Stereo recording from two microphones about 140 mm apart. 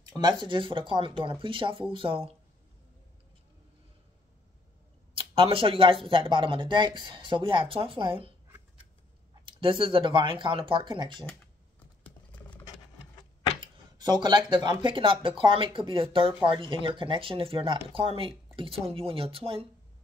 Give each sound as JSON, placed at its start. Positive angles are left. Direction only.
{"t": 0.1, "sound": "speech", "side_deg": -30}
{"t": 5.1, "sound": "speech", "side_deg": -40}
{"t": 9.5, "sound": "speech", "side_deg": -40}
{"t": 12.0, "sound": "vehicle", "side_deg": 10}
{"t": 13.6, "sound": "speech", "side_deg": -35}